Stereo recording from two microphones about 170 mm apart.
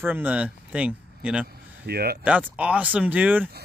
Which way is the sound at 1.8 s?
65° right (ahead or behind).